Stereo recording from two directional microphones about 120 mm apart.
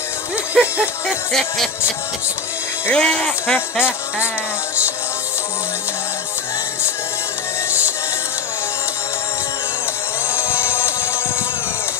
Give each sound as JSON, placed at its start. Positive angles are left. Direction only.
{"t": 0.6, "sound": "music", "side_deg": 0}
{"t": 2.9, "sound": "speech", "side_deg": 10}
{"t": 10.3, "sound": "music", "side_deg": 20}